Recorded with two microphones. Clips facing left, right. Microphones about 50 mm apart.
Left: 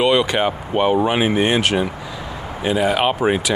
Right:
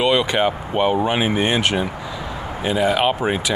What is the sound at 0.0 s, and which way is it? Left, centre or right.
Speech, centre.